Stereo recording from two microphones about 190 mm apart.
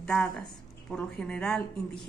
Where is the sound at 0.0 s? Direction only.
5° left (ahead or behind).